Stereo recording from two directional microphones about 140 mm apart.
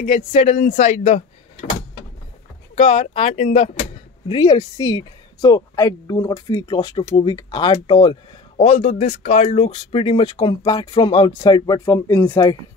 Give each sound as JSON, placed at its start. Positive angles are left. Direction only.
{"t": 0.0, "sound": "speech", "side_deg": 85}
{"t": 0.3, "sound": "speech", "side_deg": 50}
{"t": 2.7, "sound": "speech", "side_deg": 45}
{"t": 4.3, "sound": "a woman's voice", "side_deg": 30}
{"t": 8.6, "sound": "speech", "side_deg": 50}
{"t": 9.7, "sound": "a woman's voice", "side_deg": 40}